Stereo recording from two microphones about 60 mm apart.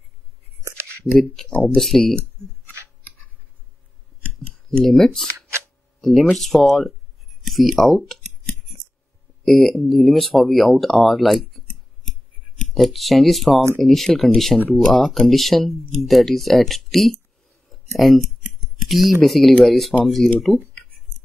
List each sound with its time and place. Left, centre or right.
1.3 s speech: centre
3.0 s a sound: left
4.6 s speech: centre
5.9 s a sound: centre
6.3 s speech: centre
7.4 s clicking: centre
9.4 s speech: centre
17.6 s a sound: centre
19.2 s speech: centre